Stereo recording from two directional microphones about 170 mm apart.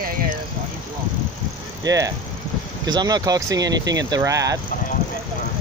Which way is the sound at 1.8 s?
20° right (ahead or behind).